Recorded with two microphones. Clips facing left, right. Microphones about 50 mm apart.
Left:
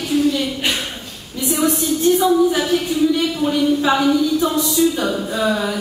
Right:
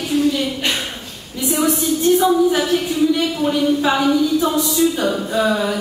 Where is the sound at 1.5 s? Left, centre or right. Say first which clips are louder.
Even; centre.